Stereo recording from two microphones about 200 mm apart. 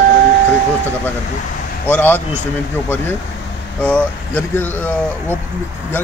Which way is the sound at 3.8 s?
5° left (ahead or behind).